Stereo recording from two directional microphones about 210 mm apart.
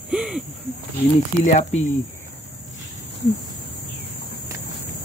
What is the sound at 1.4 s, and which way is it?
Speech, 30° left (ahead or behind).